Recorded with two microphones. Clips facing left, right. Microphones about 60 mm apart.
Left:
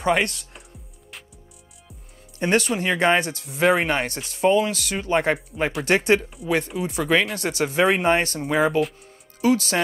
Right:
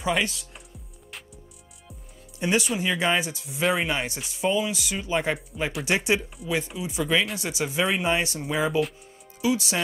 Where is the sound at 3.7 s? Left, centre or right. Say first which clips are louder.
Left 5 dB; left.